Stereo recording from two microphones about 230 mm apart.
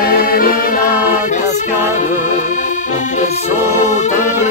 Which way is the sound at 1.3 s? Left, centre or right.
Left.